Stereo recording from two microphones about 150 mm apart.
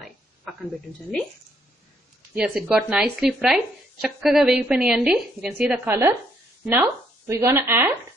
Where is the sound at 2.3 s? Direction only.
5° right (ahead or behind).